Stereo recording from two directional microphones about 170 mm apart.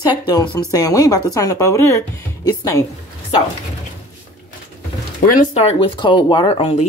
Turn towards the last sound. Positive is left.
turn(degrees=35)  # may be behind; listen again after turning